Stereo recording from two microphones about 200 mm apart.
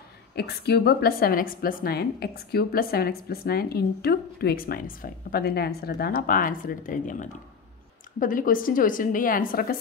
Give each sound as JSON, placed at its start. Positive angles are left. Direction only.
{"t": 0.4, "sound": "a woman's voice", "side_deg": 55}